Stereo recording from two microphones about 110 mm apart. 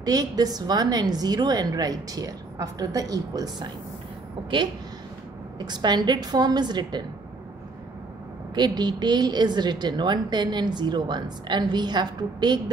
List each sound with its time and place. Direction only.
0.0 s a woman's voice: 35° right (ahead or behind)
5.6 s a woman's voice: 40° right (ahead or behind)
8.5 s a woman's voice: 40° right (ahead or behind)